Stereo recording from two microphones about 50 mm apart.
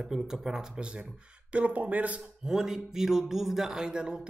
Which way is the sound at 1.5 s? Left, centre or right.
Right.